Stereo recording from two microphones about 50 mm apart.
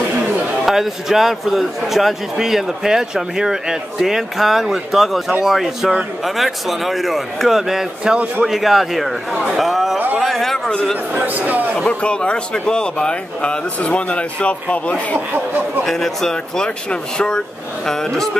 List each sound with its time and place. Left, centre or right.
0.7 s a man's voice: centre
11.1 s speech: right
11.9 s a man's voice: left
15.8 s speech: centre